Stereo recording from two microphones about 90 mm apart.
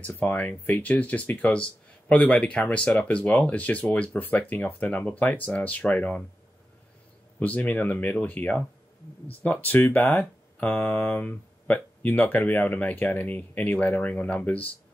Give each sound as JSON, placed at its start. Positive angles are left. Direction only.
{"t": 0.0, "sound": "speech", "side_deg": 15}
{"t": 7.3, "sound": "speech", "side_deg": 15}